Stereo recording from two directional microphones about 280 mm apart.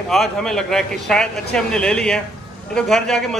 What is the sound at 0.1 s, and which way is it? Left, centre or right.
A man's voice, centre.